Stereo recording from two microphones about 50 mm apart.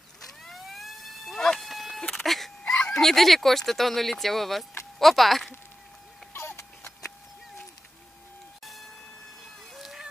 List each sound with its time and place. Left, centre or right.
0.5 s vehicle: centre
2.6 s speech: centre
6.3 s vehicle: left
9.8 s a sound: centre